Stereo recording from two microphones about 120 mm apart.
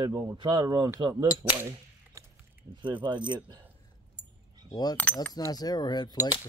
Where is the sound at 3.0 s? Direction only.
40° right (ahead or behind).